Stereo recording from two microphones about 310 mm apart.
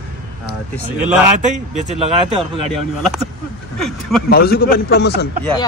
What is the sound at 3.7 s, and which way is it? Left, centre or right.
Speech, centre.